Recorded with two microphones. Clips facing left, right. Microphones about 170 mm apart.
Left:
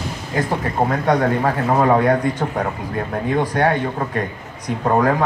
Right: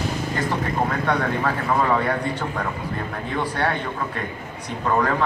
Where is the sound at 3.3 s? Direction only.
45° left (ahead or behind).